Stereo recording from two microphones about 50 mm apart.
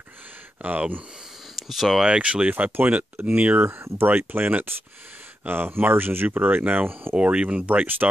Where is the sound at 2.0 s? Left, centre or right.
Right.